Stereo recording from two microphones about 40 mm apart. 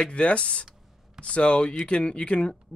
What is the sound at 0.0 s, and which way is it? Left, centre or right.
Speech, left.